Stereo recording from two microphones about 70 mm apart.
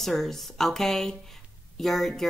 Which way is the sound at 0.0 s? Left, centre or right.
Centre.